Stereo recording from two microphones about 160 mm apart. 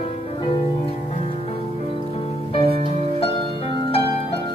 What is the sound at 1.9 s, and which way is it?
Music, 35° left (ahead or behind).